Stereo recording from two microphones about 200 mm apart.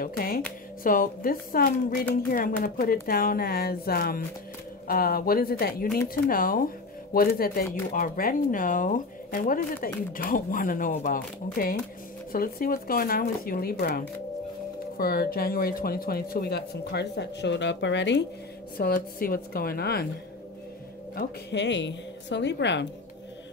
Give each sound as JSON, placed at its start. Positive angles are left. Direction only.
{"t": 0.0, "sound": "speech", "side_deg": 45}
{"t": 18.8, "sound": "speech", "side_deg": 50}
{"t": 21.2, "sound": "a woman's voice", "side_deg": 60}